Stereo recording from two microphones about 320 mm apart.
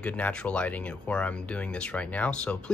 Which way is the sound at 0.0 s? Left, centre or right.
Centre.